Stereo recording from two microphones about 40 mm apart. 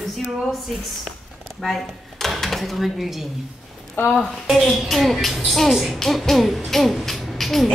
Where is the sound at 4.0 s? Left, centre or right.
Left.